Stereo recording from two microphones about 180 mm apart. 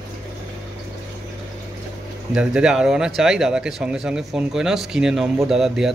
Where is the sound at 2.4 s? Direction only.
5° right (ahead or behind).